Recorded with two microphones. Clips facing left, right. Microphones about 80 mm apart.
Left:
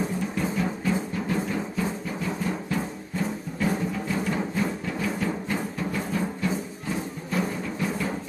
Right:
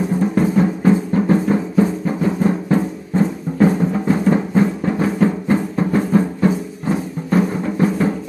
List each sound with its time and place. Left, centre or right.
0.2 s music: right